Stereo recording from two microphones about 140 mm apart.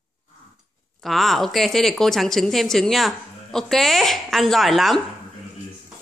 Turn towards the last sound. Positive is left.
turn(degrees=0)  # may be behind; listen again after turning